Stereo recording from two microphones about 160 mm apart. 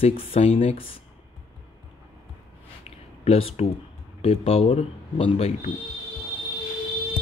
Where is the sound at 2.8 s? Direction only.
40° left (ahead or behind).